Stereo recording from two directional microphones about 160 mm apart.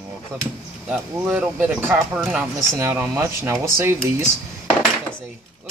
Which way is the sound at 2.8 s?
15° right (ahead or behind).